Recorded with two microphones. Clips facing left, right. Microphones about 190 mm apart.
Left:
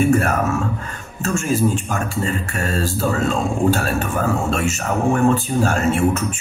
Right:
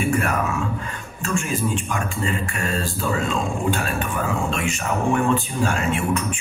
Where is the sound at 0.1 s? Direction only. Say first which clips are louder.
Left 5 dB; 40° left (ahead or behind).